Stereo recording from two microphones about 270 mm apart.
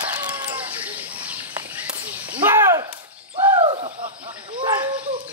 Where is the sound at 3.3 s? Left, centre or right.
Centre.